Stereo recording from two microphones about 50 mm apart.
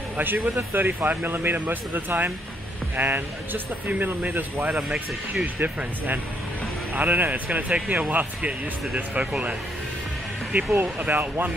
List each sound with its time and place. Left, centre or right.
0.2 s speech: right
4.7 s speech: right
6.9 s speech: right
10.5 s speech: right